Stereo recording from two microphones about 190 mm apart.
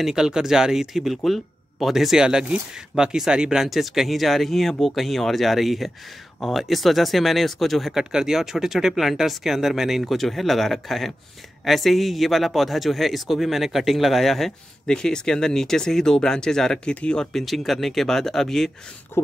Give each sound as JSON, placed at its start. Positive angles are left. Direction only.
{"t": 0.0, "sound": "a man's voice", "side_deg": -5}
{"t": 19.1, "sound": "speech", "side_deg": 10}